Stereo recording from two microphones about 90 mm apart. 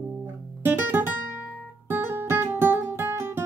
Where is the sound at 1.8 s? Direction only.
25° right (ahead or behind).